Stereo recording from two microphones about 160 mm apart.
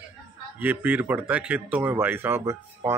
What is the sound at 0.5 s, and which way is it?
Speech, 10° right (ahead or behind).